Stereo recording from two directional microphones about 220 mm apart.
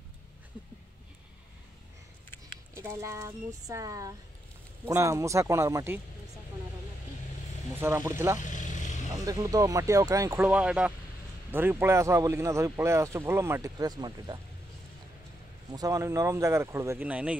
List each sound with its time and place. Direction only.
2.7 s speech: 10° right (ahead or behind)
7.8 s speech: 10° right (ahead or behind)
8.4 s vehicle: 35° left (ahead or behind)
9.1 s speech: 15° right (ahead or behind)
15.7 s speech: 15° right (ahead or behind)